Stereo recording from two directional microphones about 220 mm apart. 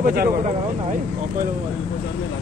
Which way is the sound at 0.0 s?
45° right (ahead or behind).